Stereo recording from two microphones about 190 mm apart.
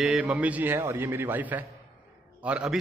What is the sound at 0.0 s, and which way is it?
A man's voice, 5° right (ahead or behind).